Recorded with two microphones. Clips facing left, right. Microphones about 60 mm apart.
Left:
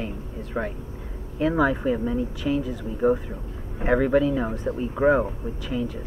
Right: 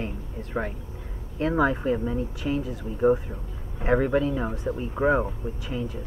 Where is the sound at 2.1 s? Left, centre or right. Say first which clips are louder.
Left 3 dB; right.